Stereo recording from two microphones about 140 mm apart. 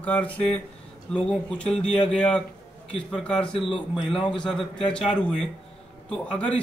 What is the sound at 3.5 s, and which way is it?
Speech, 40° left (ahead or behind).